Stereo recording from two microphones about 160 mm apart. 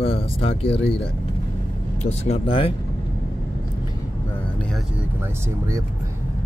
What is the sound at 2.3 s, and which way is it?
Speech, 35° left (ahead or behind).